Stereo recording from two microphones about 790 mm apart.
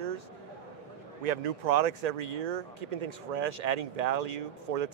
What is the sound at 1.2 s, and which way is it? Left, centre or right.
Speech, right.